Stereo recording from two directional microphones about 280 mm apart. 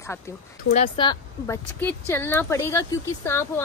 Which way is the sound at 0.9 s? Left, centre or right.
Centre.